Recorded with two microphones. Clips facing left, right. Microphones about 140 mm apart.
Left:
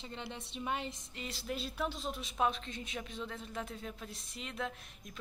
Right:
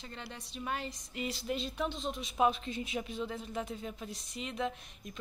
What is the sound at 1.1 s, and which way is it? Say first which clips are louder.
A woman's voice: right 6 dB; centre (ahead or behind).